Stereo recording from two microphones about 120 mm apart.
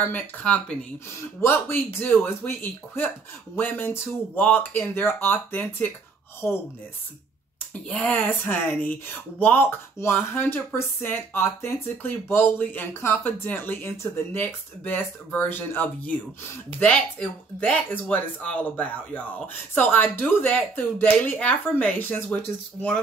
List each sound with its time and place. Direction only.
0.0 s speech: 15° left (ahead or behind)
1.4 s speech: 20° left (ahead or behind)
6.4 s speech: 5° left (ahead or behind)
7.9 s speech: 10° left (ahead or behind)